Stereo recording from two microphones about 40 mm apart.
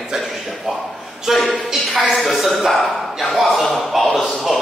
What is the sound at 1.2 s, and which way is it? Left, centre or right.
A woman's voice, centre.